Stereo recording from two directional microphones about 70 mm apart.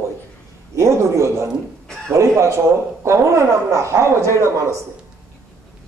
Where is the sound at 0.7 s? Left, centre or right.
Right.